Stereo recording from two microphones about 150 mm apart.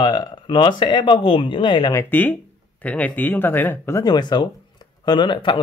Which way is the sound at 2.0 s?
15° left (ahead or behind).